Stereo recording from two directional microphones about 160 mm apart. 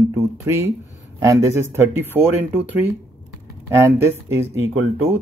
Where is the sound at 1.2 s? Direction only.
20° right (ahead or behind).